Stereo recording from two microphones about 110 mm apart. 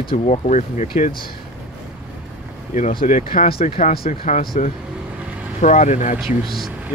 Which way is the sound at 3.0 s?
90° left.